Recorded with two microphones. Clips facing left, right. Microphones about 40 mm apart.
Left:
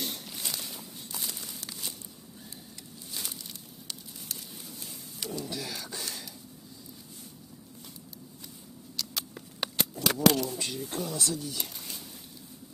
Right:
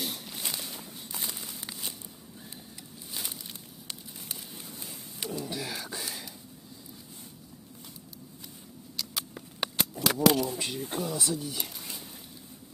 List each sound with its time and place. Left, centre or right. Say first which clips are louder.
0.0 s walk: right 1 dB; centre
0.3 s walk: right 1 dB; centre
3.1 s a sound: right 1 dB; centre
8.9 s patter: even; centre
10.0 s a sound: right 1 dB; centre
11.0 s speech: right 1 dB; centre